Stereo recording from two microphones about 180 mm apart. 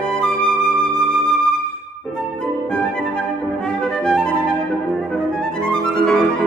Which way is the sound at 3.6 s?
5° left (ahead or behind).